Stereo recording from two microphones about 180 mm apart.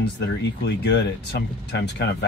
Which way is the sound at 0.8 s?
70° left (ahead or behind).